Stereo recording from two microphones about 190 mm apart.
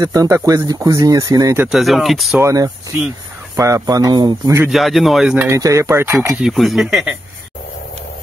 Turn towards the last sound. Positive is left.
turn(degrees=0)  # may be behind; listen again after turning